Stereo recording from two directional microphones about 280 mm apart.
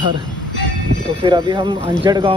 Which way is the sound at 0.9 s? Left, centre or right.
Left.